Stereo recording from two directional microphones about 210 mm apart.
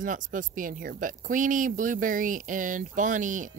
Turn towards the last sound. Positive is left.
turn(degrees=-40)  # may be behind; listen again after turning